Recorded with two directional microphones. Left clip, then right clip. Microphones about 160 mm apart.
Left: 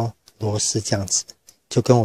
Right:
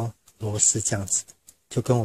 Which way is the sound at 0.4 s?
20° left (ahead or behind).